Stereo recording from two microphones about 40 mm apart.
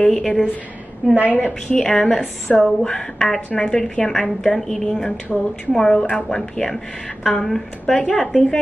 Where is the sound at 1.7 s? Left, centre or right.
Centre.